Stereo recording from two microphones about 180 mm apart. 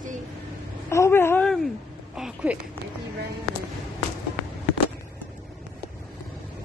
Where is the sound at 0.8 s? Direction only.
15° left (ahead or behind); by 2.6 s 5° right (ahead or behind).